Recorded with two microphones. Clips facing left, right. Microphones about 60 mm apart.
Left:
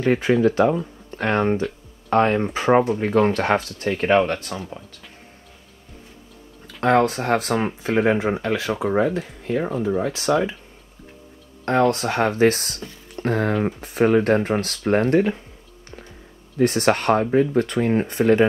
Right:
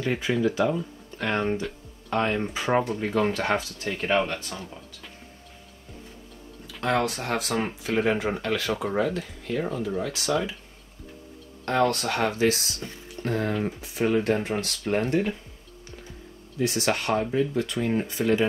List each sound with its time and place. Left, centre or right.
0.0 s speech: left
6.8 s speech: left
8.1 s speech: left
11.9 s speech: left
16.5 s speech: left